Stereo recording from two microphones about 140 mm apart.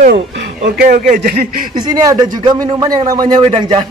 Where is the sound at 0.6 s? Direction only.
85° right.